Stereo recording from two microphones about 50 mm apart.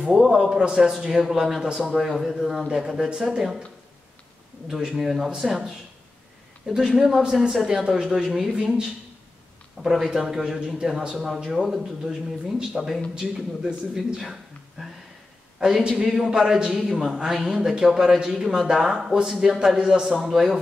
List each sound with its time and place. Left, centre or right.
0.0 s a man's voice: centre
4.6 s speech: centre
6.6 s a man's voice: centre
9.8 s a man's voice: centre